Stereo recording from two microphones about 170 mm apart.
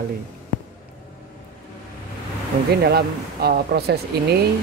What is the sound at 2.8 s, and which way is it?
Speech, 65° right (ahead or behind).